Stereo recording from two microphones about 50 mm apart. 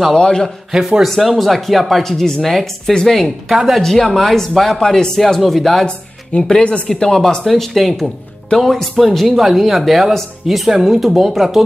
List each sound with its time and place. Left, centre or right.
0.1 s speech: centre
0.7 s speech: centre
2.0 s speech: centre
3.5 s speech: centre
3.8 s speech: centre
4.7 s speech: centre
5.9 s speech: centre